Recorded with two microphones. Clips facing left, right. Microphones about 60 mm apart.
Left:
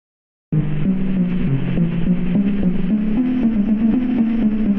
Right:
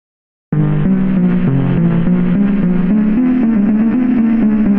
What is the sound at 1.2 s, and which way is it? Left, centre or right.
Music, right.